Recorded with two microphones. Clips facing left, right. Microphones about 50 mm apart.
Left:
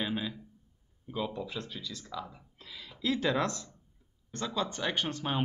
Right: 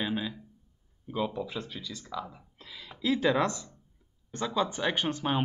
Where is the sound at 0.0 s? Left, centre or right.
Centre.